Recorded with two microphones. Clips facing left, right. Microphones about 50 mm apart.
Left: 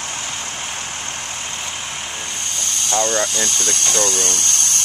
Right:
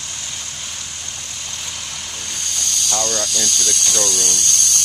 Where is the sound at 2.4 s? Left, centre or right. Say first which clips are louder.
Right 4 dB; left.